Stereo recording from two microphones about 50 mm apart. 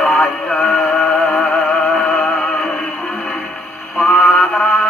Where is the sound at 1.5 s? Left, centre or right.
Left.